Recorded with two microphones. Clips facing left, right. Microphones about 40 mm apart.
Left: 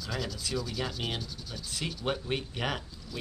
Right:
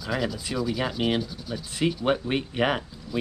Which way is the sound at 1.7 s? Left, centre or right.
Right.